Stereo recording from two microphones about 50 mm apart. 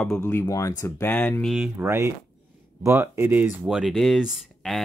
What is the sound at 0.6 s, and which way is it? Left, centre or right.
Speech, left.